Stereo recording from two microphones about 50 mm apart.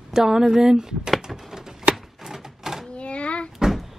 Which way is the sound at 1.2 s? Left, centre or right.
Centre.